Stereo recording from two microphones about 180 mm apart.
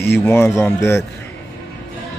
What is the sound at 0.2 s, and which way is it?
Speech, 15° left (ahead or behind).